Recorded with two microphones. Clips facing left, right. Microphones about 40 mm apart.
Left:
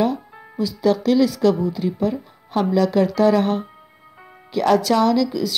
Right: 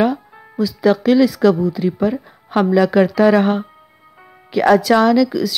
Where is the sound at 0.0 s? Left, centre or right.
Centre.